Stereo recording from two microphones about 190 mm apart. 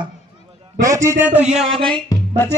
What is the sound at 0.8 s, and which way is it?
Speech, 15° right (ahead or behind).